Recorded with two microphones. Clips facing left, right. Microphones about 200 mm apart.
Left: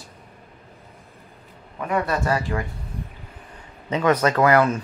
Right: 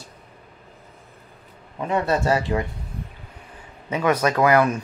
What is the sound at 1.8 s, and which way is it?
Speech, 25° right (ahead or behind).